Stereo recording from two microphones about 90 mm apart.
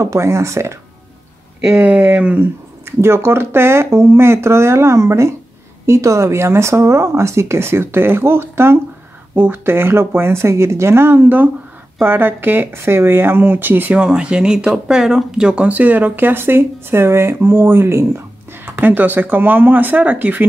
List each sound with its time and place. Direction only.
0.0 s speech: 35° right (ahead or behind)
1.8 s speech: 20° right (ahead or behind)
2.8 s speech: 30° right (ahead or behind)
14.0 s speech: 10° right (ahead or behind)